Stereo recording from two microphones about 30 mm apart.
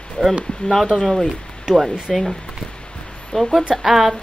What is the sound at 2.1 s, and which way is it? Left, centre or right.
Speech, centre.